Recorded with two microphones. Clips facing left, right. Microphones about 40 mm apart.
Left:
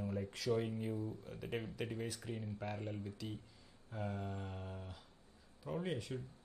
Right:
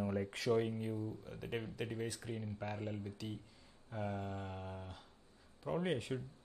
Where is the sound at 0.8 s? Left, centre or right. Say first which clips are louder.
Even; centre.